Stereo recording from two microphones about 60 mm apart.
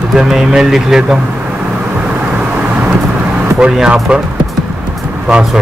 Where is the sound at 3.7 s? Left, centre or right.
Centre.